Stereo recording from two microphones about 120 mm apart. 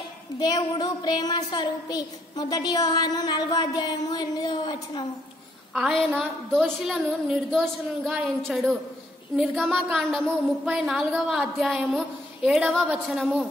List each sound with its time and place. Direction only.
0.4 s a woman's voice: 35° left (ahead or behind)
5.8 s a woman's voice: centre (ahead or behind)